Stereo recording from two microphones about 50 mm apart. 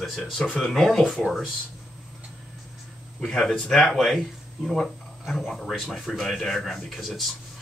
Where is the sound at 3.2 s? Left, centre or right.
Centre.